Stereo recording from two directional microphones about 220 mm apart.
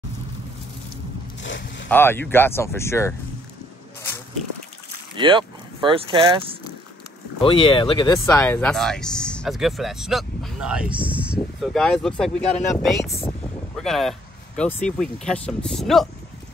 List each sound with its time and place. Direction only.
1.4 s zipper: 55° left (ahead or behind)
1.9 s speech: 10° left (ahead or behind)
5.1 s speech: 25° right (ahead or behind)
7.4 s speech: 25° left (ahead or behind); by 12.3 s centre (ahead or behind)
12.4 s speech: 30° left (ahead or behind)
13.7 s speech: centre (ahead or behind)